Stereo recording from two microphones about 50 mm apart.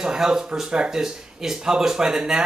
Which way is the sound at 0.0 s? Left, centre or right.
Centre.